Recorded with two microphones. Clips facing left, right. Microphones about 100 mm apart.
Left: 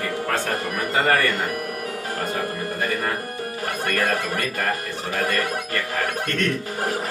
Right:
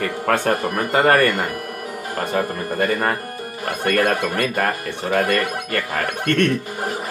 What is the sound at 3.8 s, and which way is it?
Speech, 65° right (ahead or behind).